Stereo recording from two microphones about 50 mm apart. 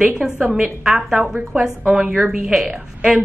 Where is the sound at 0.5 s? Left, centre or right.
Centre.